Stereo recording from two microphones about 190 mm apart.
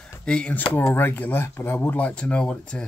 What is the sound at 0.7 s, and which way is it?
Speech, 10° left (ahead or behind).